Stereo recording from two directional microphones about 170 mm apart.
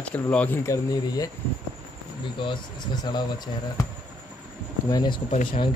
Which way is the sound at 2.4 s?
25° left (ahead or behind).